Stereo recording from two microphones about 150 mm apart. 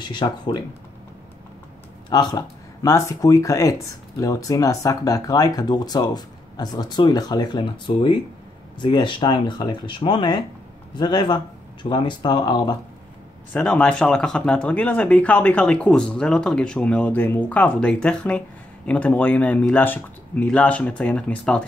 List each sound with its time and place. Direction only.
0.0 s speech: 30° left (ahead or behind)
2.0 s speech: 25° left (ahead or behind)
13.5 s speech: 10° left (ahead or behind)